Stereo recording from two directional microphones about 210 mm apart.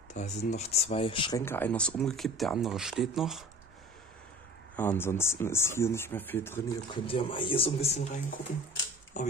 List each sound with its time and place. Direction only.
0.1 s speech: 35° left (ahead or behind)
1.4 s speech: 10° left (ahead or behind)
4.7 s speech: 10° left (ahead or behind)
6.9 s speech: 25° left (ahead or behind)